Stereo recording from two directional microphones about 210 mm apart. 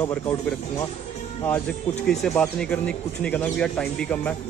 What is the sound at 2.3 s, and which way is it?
Speech, 5° left (ahead or behind).